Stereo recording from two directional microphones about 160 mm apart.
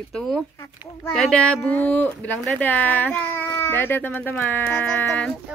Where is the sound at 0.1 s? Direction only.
5° left (ahead or behind).